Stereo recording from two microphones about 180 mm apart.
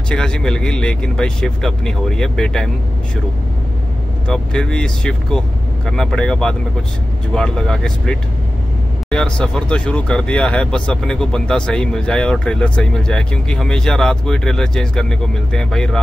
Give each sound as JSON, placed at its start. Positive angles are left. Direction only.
{"t": 0.1, "sound": "speech", "side_deg": 5}
{"t": 4.3, "sound": "speech", "side_deg": 5}